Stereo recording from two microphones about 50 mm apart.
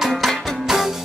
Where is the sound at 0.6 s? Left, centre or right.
Centre.